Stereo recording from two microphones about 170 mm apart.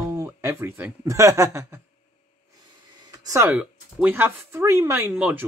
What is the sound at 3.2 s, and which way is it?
Speech, 15° right (ahead or behind).